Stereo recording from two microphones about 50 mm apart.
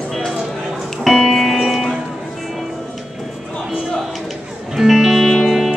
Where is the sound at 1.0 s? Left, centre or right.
Centre.